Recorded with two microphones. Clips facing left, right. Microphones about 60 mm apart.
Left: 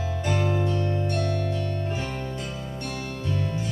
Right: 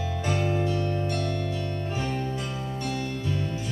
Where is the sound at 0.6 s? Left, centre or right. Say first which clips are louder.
Left 1 dB; left.